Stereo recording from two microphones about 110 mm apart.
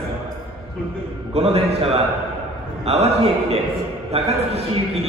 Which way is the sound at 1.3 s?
70° right (ahead or behind).